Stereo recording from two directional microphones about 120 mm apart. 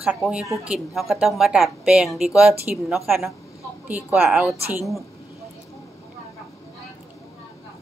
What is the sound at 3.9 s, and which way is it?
Speech, 10° right (ahead or behind).